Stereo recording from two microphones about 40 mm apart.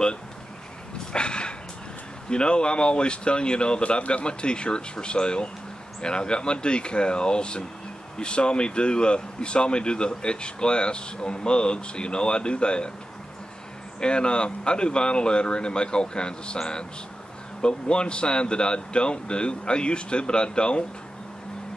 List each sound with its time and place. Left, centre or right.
1.1 s a sound: left
2.2 s speech: left
13.9 s speech: left